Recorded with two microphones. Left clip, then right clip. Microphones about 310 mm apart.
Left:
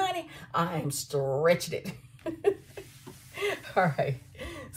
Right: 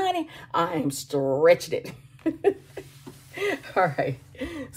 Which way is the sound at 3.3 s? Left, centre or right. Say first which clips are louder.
Right 3 dB; right.